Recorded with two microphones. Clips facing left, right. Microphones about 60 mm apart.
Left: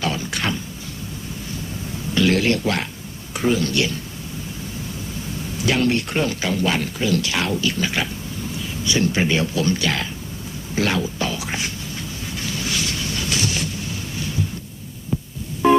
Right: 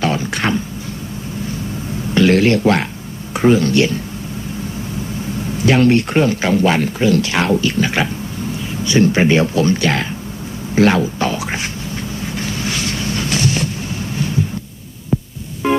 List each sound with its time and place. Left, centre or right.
0.0 s a sound: right
2.1 s speech: right
5.7 s speech: right
12.4 s vehicle: right